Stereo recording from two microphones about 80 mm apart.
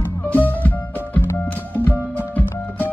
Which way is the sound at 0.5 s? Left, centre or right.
Left.